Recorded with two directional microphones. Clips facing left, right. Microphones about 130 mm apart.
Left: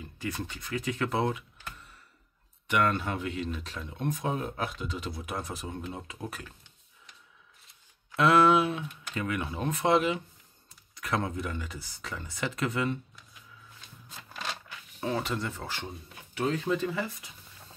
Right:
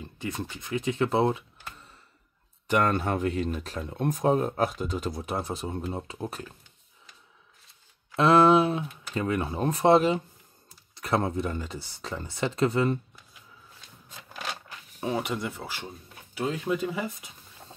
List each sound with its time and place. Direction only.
0.0 s speech: 25° right (ahead or behind)
2.7 s speech: 40° right (ahead or behind)
5.2 s speech: 30° right (ahead or behind)
8.2 s speech: 30° right (ahead or behind)
15.0 s speech: 15° right (ahead or behind)